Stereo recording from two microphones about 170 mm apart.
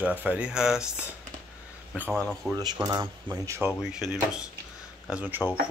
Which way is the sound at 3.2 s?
15° right (ahead or behind).